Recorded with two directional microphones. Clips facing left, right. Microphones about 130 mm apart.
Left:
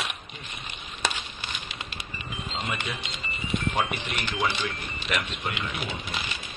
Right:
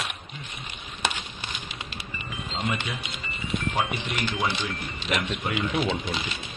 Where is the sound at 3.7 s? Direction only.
10° right (ahead or behind).